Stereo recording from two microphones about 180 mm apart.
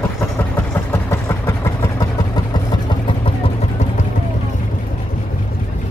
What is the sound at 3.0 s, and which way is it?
Vehicle, 30° left (ahead or behind).